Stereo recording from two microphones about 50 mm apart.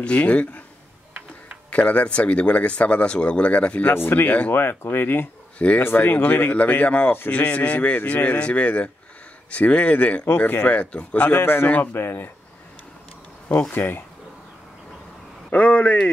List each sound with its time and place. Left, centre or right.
0.0 s speech: left
1.7 s speech: left
3.9 s speech: left
4.3 s speech: left
4.6 s speech: left
5.6 s speech: left
5.9 s speech: left
11.3 s speech: left
11.6 s speech: left
11.9 s speech: left
13.7 s speech: left
15.5 s speech: left